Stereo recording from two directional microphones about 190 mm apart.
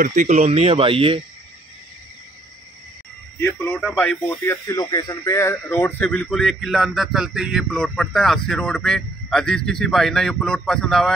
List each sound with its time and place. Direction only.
0.0 s speech: 40° right (ahead or behind)
3.3 s speech: 10° left (ahead or behind)